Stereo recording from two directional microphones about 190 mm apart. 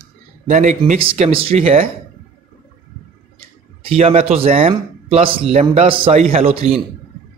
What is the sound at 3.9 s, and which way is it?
Speech, 30° right (ahead or behind).